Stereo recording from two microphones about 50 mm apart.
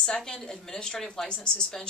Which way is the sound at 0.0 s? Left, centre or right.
Centre.